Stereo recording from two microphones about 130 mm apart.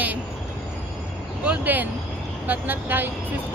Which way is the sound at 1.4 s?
15° right (ahead or behind).